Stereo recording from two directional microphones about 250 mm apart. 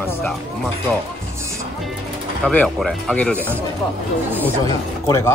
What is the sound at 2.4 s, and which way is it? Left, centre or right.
Speech, centre.